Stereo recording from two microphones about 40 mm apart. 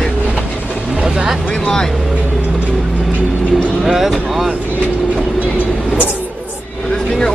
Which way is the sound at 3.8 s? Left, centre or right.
Centre.